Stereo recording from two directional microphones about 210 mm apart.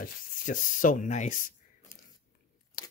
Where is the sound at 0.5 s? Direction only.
40° left (ahead or behind).